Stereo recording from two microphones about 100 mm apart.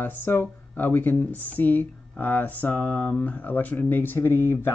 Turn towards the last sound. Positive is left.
turn(degrees=20)  # may be behind; listen again after turning